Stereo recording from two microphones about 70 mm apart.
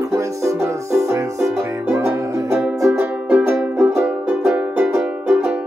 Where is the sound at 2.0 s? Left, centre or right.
Centre.